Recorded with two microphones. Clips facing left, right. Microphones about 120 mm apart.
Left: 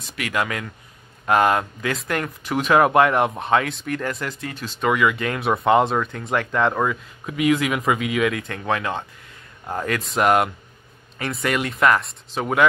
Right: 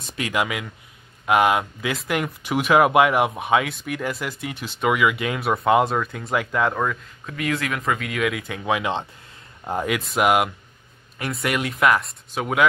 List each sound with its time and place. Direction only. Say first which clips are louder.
0.1 s speech: even; 20° right (ahead or behind); by 12.6 s 5° right (ahead or behind)